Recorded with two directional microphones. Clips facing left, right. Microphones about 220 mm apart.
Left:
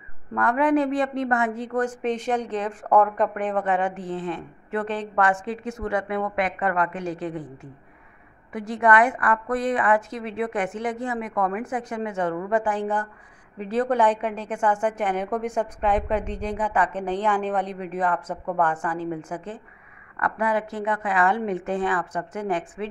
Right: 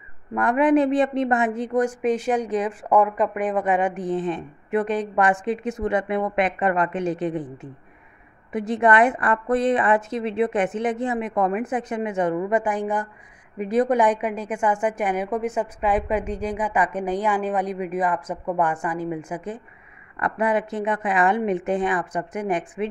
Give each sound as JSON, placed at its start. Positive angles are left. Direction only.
{"t": 0.3, "sound": "a woman's voice", "side_deg": -20}